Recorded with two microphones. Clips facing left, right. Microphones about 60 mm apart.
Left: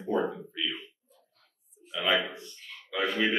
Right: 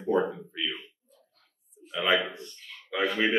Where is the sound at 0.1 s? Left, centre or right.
Centre.